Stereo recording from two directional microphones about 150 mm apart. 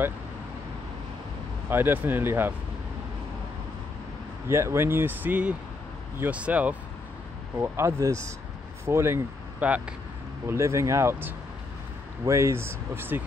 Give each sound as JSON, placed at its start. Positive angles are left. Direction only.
{"t": 1.7, "sound": "speech", "side_deg": -15}
{"t": 4.5, "sound": "speech", "side_deg": -15}